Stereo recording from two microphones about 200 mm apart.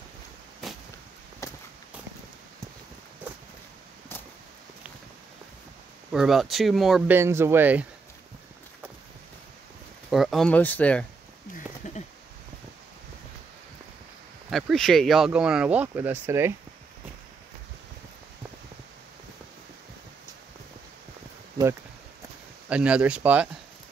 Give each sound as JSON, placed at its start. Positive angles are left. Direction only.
{"t": 1.4, "sound": "walk", "side_deg": 15}
{"t": 6.1, "sound": "speech", "side_deg": 0}
{"t": 7.2, "sound": "speech", "side_deg": -10}
{"t": 10.1, "sound": "speech", "side_deg": 0}
{"t": 11.8, "sound": "a sound", "side_deg": 40}
{"t": 14.5, "sound": "speech", "side_deg": 0}
{"t": 22.7, "sound": "speech", "side_deg": -5}